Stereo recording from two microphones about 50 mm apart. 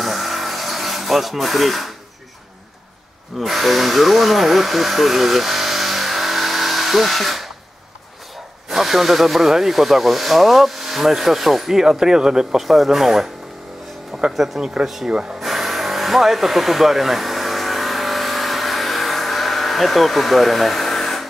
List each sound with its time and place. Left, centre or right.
0.0 s a sound: centre
3.3 s speech: centre
8.6 s speech: centre
14.3 s speech: centre
15.0 s speech: centre
15.4 s a sound: centre